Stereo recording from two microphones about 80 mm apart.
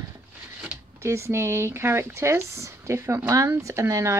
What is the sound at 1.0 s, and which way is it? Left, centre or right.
Speech, right.